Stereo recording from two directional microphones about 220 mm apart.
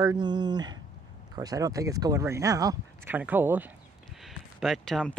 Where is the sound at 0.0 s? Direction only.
20° right (ahead or behind).